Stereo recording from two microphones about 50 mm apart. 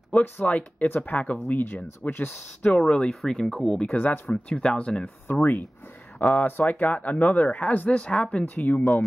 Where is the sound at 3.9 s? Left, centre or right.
Left.